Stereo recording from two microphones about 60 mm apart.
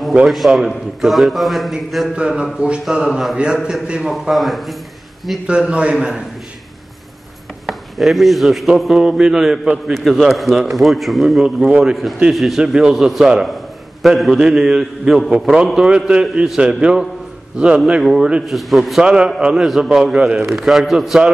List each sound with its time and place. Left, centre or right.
0.3 s speech: centre
2.1 s a man's voice: centre
3.1 s speech: centre
3.8 s a man's voice: centre
4.1 s speech: centre
5.5 s a man's voice: centre
7.6 s a man's voice: centre
19.0 s a man's voice: centre